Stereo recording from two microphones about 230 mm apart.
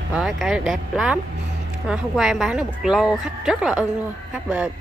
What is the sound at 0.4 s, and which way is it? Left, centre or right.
A woman's voice, centre.